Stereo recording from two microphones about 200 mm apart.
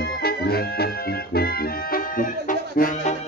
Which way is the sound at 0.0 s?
50° left (ahead or behind).